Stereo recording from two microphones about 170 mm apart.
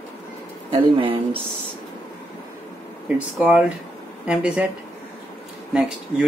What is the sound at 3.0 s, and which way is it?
Speech, 5° right (ahead or behind).